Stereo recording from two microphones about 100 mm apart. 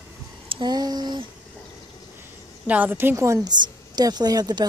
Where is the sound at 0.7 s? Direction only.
40° right (ahead or behind).